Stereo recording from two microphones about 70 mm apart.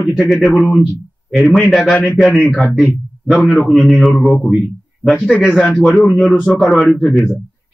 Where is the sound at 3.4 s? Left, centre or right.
Centre.